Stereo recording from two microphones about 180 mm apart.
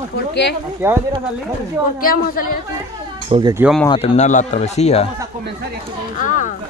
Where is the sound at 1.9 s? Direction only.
50° left (ahead or behind).